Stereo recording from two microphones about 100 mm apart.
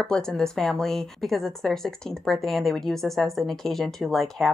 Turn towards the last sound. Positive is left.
turn(degrees=0)  # may be behind; listen again after turning